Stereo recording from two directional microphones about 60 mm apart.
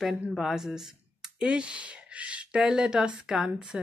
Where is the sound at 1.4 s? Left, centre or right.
Centre.